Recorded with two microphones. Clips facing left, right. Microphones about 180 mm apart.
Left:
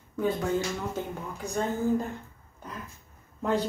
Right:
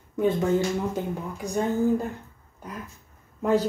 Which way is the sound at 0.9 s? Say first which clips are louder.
Right 4 dB; 10° right (ahead or behind).